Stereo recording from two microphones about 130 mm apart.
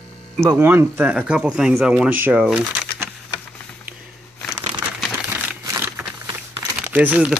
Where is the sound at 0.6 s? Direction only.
15° right (ahead or behind).